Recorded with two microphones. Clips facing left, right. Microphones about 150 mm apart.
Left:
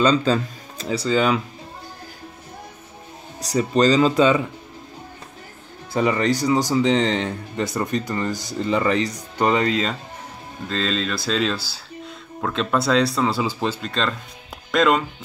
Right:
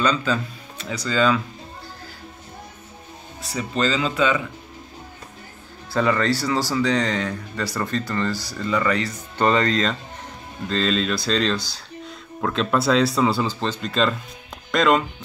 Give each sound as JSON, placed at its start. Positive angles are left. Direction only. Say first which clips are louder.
{"t": 0.0, "sound": "speech", "louder": "left 4 dB", "side_deg": 35}
{"t": 3.3, "sound": "speech", "louder": "left 6 dB", "side_deg": 40}
{"t": 5.9, "sound": "speech", "louder": "left 1 dB", "side_deg": 15}